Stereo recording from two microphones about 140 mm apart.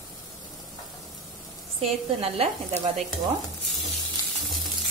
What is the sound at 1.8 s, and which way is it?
A woman's voice, 50° right (ahead or behind).